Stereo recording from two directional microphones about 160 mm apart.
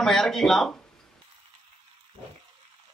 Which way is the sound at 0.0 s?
Centre (ahead or behind).